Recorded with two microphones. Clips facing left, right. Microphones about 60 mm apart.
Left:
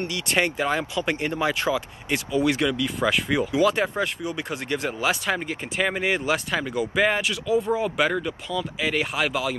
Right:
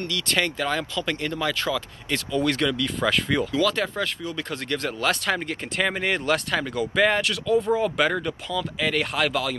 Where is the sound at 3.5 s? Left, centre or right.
Centre.